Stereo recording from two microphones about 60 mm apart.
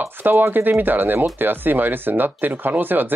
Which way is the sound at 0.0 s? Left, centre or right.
Right.